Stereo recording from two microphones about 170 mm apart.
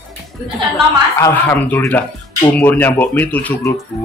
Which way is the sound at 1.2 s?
10° left (ahead or behind).